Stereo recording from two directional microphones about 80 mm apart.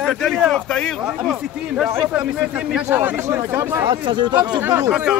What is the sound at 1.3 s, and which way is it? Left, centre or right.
Speech, centre.